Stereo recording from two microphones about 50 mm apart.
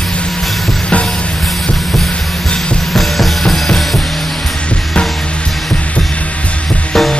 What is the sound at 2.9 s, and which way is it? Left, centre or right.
Music, centre.